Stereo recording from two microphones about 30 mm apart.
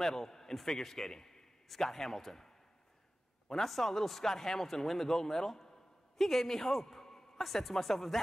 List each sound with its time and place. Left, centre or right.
0.0 s a man's voice: centre